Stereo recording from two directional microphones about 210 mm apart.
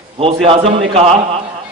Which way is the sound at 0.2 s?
30° right (ahead or behind).